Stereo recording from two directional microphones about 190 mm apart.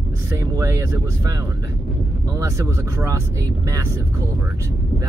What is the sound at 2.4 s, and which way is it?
Speech, 15° right (ahead or behind).